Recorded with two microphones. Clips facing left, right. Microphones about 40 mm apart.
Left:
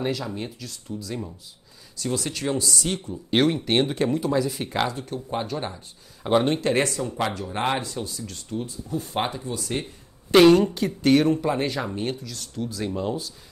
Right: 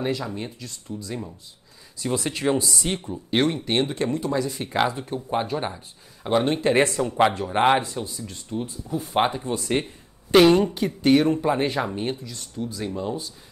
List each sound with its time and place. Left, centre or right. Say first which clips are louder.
0.0 s speech: right 1 dB; centre
2.0 s speech: right 2 dB; right
3.3 s speech: left 1 dB; centre
4.8 s speech: right 3 dB; centre
6.2 s speech: left 1 dB; centre
6.6 s speech: right 3 dB; right
9.4 s speech: right 4 dB; right
10.6 s speech: even; centre